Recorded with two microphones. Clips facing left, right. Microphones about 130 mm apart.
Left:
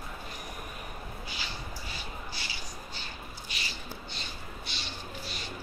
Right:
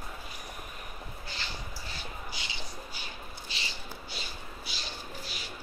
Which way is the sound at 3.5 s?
30° right (ahead or behind).